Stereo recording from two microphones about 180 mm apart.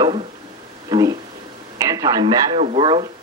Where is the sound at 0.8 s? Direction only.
20° right (ahead or behind).